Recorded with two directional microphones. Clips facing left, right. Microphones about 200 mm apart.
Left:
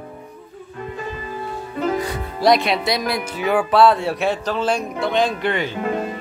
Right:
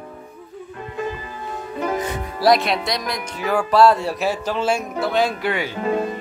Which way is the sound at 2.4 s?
Centre (ahead or behind).